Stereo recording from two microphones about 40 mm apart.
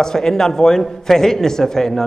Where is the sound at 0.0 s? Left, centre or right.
Centre.